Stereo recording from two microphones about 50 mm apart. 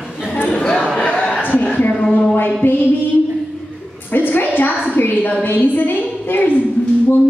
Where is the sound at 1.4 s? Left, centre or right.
Left.